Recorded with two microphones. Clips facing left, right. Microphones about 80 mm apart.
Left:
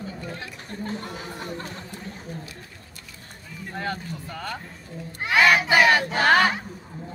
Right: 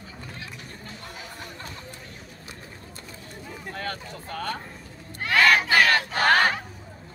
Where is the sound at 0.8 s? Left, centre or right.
Left.